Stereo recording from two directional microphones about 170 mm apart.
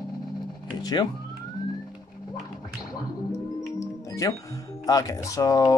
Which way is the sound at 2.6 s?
25° left (ahead or behind).